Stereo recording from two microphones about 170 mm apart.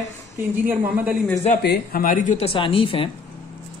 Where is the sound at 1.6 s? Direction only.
65° left (ahead or behind); by 3.0 s 30° left (ahead or behind).